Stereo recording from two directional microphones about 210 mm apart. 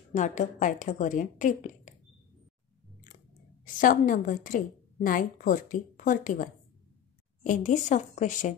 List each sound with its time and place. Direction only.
0.1 s a woman's voice: 35° left (ahead or behind)
3.6 s a woman's voice: 40° left (ahead or behind)